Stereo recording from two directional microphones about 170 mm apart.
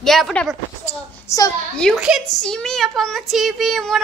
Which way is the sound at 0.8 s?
20° left (ahead or behind).